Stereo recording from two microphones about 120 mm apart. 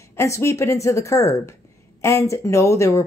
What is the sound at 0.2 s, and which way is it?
A woman's voice, 25° left (ahead or behind).